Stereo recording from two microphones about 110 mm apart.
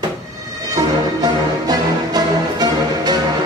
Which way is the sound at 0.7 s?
35° right (ahead or behind).